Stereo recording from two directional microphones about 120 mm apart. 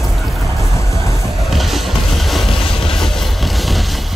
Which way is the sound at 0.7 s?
25° left (ahead or behind).